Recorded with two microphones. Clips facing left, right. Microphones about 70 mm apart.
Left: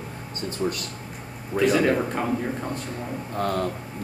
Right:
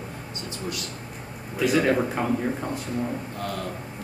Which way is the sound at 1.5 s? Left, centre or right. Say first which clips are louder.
Left 1 dB; centre.